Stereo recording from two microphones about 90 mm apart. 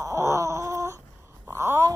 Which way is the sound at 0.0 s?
35° right (ahead or behind).